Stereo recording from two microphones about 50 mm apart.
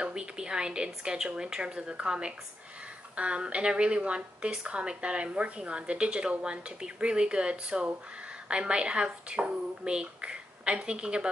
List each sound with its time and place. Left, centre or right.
0.0 s a woman's voice: centre